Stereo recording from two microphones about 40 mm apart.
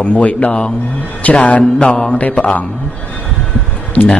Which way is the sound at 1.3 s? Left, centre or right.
Left.